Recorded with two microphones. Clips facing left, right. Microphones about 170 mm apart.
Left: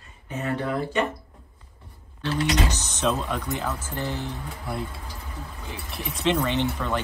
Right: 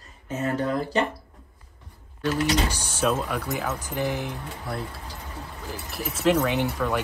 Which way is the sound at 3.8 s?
15° right (ahead or behind).